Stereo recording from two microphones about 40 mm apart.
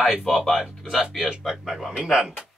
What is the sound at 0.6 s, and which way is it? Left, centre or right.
Speech, centre.